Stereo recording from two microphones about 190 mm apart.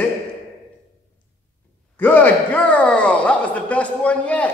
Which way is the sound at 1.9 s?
10° left (ahead or behind).